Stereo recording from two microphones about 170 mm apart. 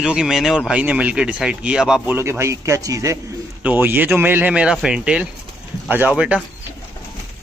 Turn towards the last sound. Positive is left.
turn(degrees=-5)  # may be behind; listen again after turning